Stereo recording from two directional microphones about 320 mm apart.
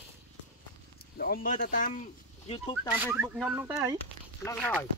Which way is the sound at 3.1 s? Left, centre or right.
Centre.